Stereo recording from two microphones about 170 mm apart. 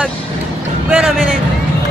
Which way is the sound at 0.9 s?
Centre (ahead or behind).